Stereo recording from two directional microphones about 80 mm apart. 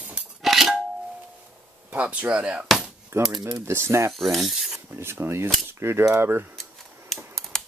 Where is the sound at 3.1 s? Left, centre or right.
Right.